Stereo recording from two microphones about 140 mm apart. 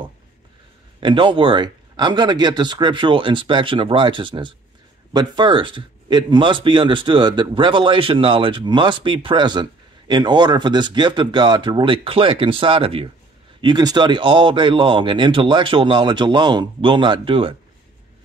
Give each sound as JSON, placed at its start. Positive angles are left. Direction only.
{"t": 1.0, "sound": "a man's voice", "side_deg": -35}